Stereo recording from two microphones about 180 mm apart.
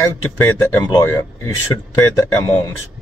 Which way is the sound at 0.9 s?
20° left (ahead or behind).